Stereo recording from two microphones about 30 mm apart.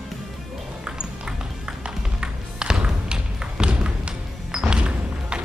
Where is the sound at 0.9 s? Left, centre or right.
Right.